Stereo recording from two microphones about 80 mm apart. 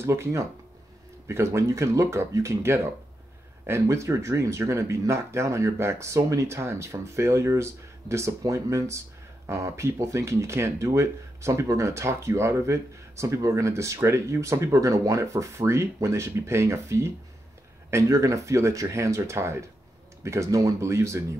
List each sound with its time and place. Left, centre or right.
0.0 s speech: right